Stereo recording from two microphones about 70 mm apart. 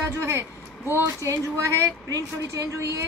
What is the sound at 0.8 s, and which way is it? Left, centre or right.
Speech, right.